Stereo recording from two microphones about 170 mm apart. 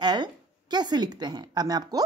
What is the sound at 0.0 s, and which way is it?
Speech, 25° right (ahead or behind).